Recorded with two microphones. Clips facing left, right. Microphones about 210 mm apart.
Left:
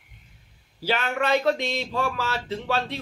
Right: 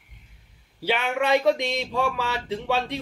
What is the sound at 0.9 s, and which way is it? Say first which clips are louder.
A man's voice: right 1 dB; 15° right (ahead or behind).